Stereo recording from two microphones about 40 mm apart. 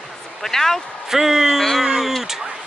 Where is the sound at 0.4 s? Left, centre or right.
Centre.